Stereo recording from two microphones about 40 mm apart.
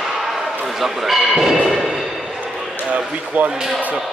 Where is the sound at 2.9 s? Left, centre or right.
Right.